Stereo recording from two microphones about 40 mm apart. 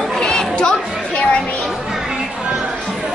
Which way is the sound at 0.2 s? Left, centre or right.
Left.